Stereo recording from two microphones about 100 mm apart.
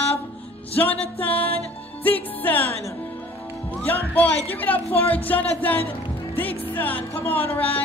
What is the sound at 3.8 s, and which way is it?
Music, 15° left (ahead or behind).